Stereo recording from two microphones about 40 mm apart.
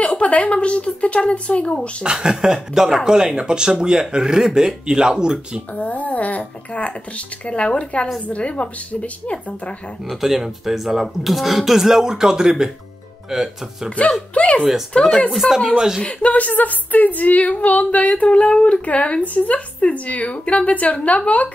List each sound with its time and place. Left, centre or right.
0.0 s speech: left
2.0 s speech: right
5.8 s speech: left
10.0 s speech: centre
14.3 s speech: left
15.0 s speech: centre
15.3 s speech: centre
16.0 s speech: left